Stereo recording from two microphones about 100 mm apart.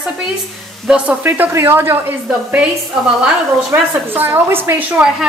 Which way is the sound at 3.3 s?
15° right (ahead or behind).